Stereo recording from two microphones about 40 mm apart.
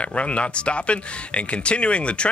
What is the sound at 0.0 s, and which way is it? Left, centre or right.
Speech, left.